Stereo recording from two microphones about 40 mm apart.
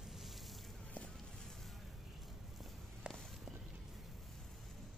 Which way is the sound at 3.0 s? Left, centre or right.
Right.